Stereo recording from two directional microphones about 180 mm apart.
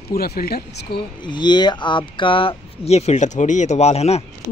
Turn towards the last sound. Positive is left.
turn(degrees=35)  # may be behind; listen again after turning